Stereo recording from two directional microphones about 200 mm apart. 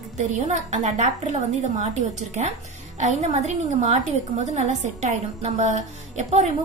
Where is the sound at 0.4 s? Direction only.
35° right (ahead or behind).